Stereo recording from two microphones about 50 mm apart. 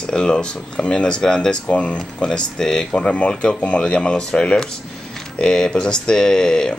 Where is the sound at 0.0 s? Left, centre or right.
Centre.